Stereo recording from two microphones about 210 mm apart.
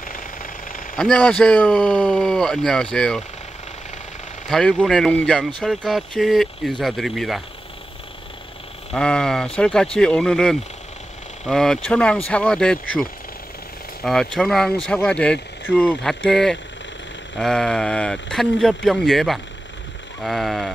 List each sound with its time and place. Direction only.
0.0 s vehicle: 40° left (ahead or behind)
0.9 s speech: 5° left (ahead or behind)
4.5 s speech: 5° left (ahead or behind)
8.9 s speech: 5° left (ahead or behind)
14.0 s speech: centre (ahead or behind)